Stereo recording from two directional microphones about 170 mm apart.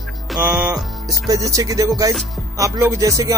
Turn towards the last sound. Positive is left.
turn(degrees=-20)  # may be behind; listen again after turning